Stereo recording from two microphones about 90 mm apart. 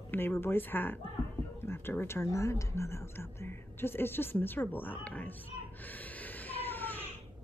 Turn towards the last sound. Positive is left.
turn(degrees=20)  # may be behind; listen again after turning